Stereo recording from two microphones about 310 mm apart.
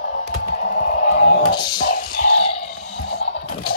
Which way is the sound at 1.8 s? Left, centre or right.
Left.